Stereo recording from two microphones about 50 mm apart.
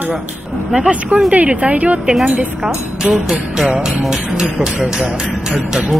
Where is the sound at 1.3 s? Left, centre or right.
Right.